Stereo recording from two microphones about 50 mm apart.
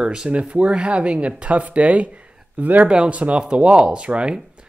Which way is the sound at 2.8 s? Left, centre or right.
Right.